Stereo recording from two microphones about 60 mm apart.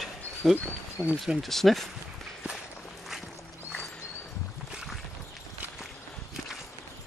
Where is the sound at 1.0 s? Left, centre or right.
Left.